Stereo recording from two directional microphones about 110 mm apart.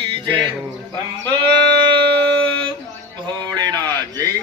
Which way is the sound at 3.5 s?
35° right (ahead or behind).